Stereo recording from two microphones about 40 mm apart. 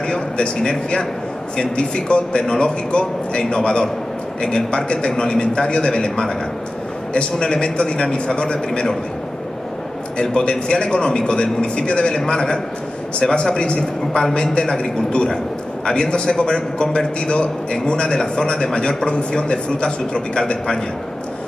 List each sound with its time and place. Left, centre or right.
0.0 s a man's voice: centre
10.3 s a man's voice: left